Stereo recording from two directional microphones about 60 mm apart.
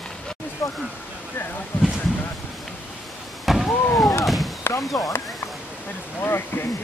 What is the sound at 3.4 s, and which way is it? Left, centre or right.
Vehicle, centre.